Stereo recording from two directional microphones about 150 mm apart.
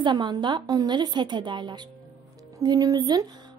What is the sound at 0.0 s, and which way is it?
A woman's voice, 30° right (ahead or behind).